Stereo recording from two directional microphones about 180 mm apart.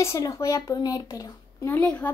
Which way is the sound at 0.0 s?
15° left (ahead or behind).